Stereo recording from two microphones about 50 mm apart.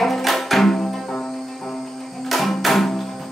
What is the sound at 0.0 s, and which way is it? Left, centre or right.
Music, centre.